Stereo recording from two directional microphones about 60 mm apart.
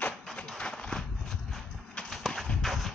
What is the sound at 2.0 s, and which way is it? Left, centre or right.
Horse, centre.